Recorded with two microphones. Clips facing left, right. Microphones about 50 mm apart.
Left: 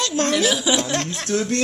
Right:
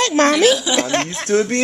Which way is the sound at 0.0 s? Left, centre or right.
Right.